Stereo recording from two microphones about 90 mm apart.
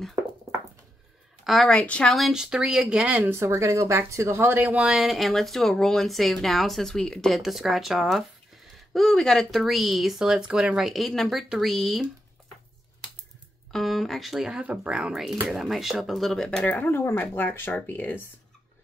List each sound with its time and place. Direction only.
1.4 s a woman's voice: centre (ahead or behind)
1.7 s speech: 15° left (ahead or behind)
2.1 s speech: 5° right (ahead or behind)
3.3 s speech: 30° right (ahead or behind)
4.7 s speech: 5° right (ahead or behind)
13.7 s speech: centre (ahead or behind)
14.6 s speech: 15° right (ahead or behind); by 16.4 s centre (ahead or behind)
16.4 s speech: 15° left (ahead or behind)
16.8 s speech: 25° left (ahead or behind)